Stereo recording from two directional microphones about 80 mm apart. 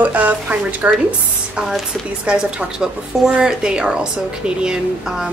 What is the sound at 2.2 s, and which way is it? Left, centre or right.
Speech, centre.